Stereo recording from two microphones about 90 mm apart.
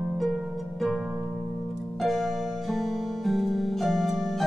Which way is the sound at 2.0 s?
5° left (ahead or behind).